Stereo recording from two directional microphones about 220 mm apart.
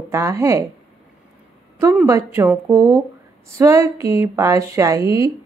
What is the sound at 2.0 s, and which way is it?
A woman's voice, 15° right (ahead or behind).